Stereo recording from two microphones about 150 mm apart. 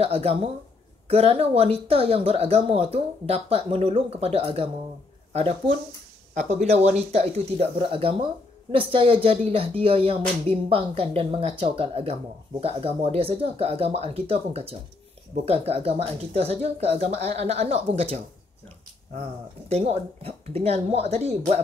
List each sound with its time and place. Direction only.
0.0 s speech: 40° right (ahead or behind)
19.7 s speech: 45° right (ahead or behind)